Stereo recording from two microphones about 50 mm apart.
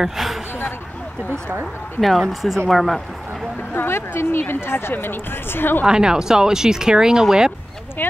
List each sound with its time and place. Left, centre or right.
0.0 s speech: centre
2.0 s speech: centre
3.7 s a woman's voice: left
5.9 s speech: centre
8.0 s a woman's voice: left